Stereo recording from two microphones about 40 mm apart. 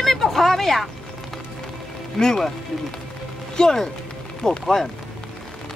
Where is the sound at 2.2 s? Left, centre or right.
Centre.